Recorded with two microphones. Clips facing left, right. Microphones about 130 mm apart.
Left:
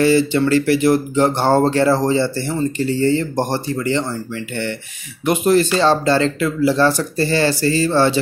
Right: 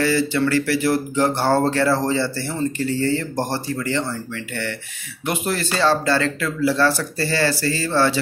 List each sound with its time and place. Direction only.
0.0 s speech: 20° left (ahead or behind)
5.2 s speech: 20° left (ahead or behind)